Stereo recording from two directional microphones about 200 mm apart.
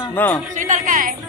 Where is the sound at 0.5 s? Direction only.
40° right (ahead or behind).